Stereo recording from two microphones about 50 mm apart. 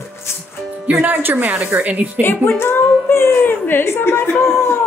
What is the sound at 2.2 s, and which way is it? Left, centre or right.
A woman's voice, left.